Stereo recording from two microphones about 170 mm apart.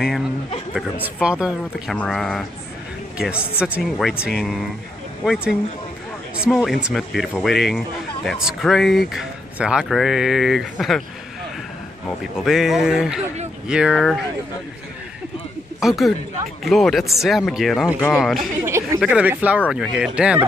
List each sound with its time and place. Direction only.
0.7 s speech: 10° right (ahead or behind)
12.4 s speech: centre (ahead or behind)
15.8 s speech: centre (ahead or behind)
18.7 s a sound: 15° right (ahead or behind)
18.9 s speech: 5° right (ahead or behind)